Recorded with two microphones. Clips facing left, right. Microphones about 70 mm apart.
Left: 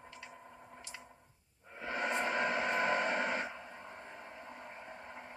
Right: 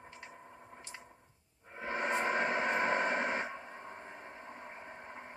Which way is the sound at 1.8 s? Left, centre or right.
Right.